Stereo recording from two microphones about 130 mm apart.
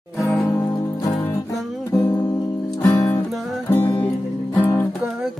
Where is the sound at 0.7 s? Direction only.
25° left (ahead or behind).